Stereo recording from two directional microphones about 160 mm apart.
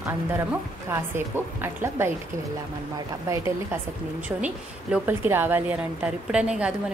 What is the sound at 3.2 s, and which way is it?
Speech, 20° right (ahead or behind).